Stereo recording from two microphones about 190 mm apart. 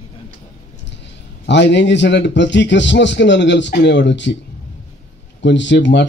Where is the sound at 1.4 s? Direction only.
65° left (ahead or behind).